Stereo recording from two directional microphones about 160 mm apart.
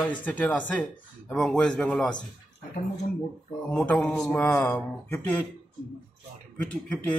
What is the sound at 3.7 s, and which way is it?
A man's voice, 5° left (ahead or behind).